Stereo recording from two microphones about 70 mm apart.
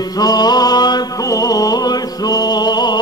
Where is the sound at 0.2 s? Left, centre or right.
Left.